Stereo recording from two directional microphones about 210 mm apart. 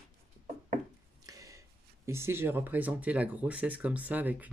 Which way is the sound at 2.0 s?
10° right (ahead or behind).